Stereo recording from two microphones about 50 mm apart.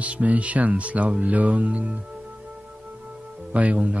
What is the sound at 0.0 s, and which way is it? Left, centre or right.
Speech, right.